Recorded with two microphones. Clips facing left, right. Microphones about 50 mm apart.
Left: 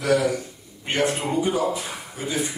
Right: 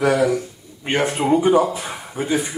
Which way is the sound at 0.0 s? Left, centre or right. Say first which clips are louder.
Right 4 dB; right.